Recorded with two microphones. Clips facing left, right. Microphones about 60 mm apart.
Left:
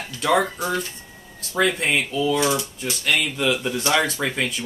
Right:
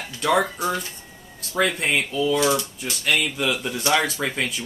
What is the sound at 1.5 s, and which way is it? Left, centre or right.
Speech, centre.